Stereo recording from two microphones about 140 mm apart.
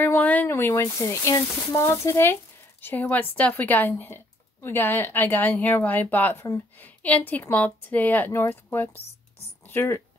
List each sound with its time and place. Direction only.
0.0 s speech: 10° left (ahead or behind)